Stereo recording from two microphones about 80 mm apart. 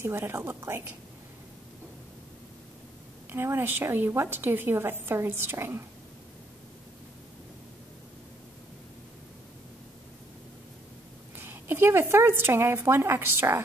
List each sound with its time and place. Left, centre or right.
0.0 s a woman's voice: right
3.3 s a woman's voice: right
11.3 s a woman's voice: right